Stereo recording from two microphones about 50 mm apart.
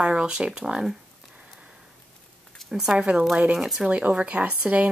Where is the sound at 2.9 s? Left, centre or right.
Centre.